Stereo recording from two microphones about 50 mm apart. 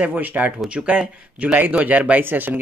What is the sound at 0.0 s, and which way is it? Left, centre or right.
Speech, right.